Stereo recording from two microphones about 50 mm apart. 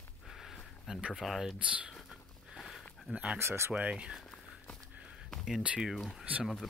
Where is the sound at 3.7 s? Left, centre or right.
Right.